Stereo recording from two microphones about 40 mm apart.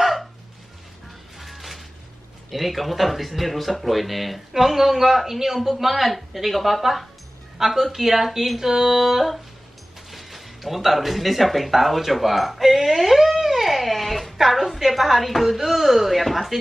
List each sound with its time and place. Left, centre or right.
0.0 s hiccup: centre
1.4 s a sound: centre
2.5 s a man's voice: centre